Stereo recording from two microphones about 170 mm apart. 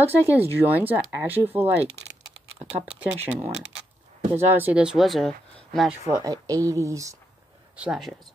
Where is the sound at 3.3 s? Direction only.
10° right (ahead or behind).